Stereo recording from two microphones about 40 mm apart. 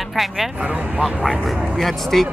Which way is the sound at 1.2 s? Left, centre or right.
Centre.